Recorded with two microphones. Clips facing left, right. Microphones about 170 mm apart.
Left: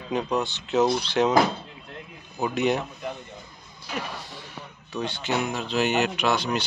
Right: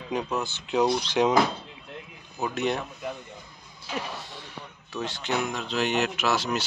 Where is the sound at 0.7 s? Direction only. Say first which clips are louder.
Left 1 dB; 10° right (ahead or behind).